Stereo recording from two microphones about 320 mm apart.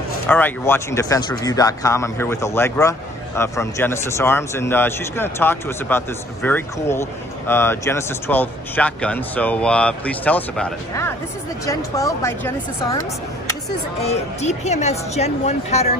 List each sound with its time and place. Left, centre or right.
0.3 s speech: centre
14.0 s speech: centre